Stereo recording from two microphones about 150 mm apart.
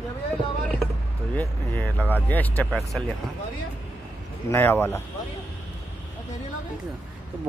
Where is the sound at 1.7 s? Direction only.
10° left (ahead or behind).